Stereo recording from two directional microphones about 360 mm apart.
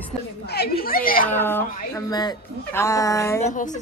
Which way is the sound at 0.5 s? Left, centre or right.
Left.